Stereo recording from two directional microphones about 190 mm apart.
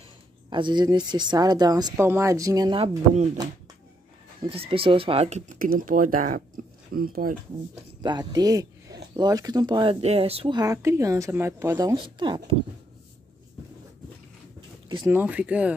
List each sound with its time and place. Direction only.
0.5 s a woman's voice: 25° right (ahead or behind)
4.4 s speech: 30° right (ahead or behind); by 7.3 s 50° right (ahead or behind)
8.0 s a woman's voice: 20° right (ahead or behind)
15.0 s speech: 10° right (ahead or behind)